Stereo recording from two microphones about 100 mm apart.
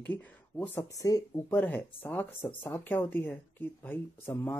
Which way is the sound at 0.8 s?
35° left (ahead or behind).